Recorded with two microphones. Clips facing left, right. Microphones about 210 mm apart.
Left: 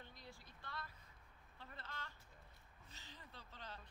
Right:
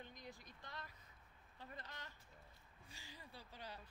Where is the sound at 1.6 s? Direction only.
15° right (ahead or behind).